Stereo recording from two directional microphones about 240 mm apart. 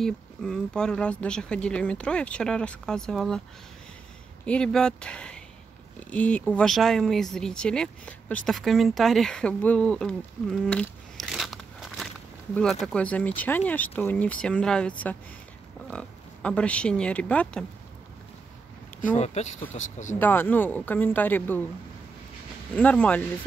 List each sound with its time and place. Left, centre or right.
0.0 s speech: centre
4.5 s speech: centre
19.1 s speech: left
20.2 s speech: centre
22.8 s speech: centre